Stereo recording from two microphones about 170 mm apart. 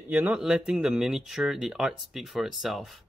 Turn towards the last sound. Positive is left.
turn(degrees=0)  # may be behind; listen again after turning